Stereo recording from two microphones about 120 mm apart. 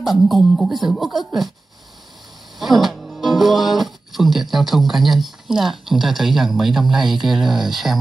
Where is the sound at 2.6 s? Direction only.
Centre (ahead or behind).